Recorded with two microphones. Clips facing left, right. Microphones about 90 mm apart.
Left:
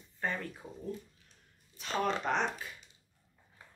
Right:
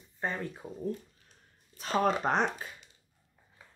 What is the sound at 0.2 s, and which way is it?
Speech, 20° right (ahead or behind).